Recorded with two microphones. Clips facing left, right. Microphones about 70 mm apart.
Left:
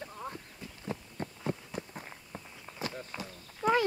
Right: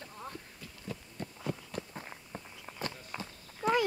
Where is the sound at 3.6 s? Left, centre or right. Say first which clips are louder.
Left 2 dB; centre.